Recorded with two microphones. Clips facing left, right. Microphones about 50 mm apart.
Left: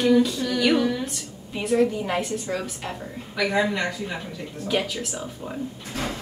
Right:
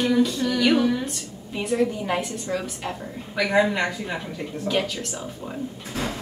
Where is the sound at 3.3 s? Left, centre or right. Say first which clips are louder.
Right 2 dB; centre.